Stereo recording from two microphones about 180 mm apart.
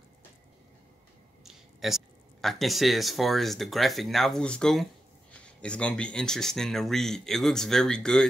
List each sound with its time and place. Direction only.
1.4 s speech: centre (ahead or behind)